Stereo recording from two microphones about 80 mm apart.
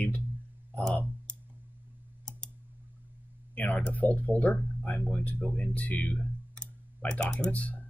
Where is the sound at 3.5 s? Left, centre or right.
Centre.